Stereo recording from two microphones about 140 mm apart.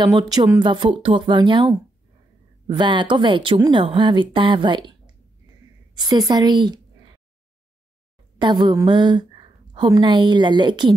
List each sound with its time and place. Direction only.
0.0 s a woman's voice: 25° right (ahead or behind)
8.4 s a woman's voice: 30° right (ahead or behind)